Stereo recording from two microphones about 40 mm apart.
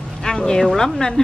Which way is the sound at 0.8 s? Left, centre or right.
Centre.